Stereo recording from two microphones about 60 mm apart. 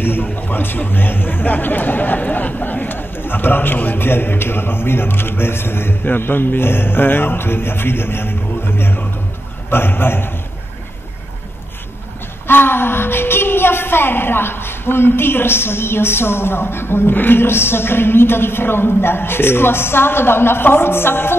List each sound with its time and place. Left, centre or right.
0.0 s a man's voice: left
12.4 s a man's voice: left